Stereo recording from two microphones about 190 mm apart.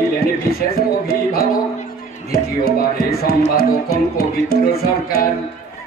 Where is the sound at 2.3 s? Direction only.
55° left (ahead or behind).